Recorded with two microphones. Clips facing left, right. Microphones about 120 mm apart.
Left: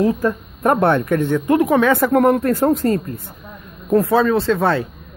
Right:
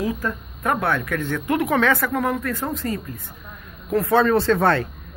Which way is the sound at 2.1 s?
50° left (ahead or behind).